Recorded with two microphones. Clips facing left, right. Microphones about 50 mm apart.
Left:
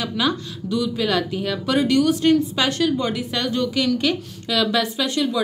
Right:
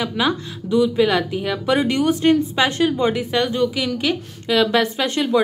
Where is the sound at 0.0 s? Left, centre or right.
Right.